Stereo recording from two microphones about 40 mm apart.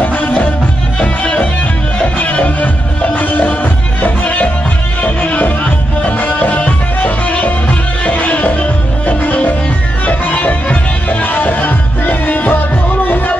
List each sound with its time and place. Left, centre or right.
0.0 s music: left
1.0 s music: left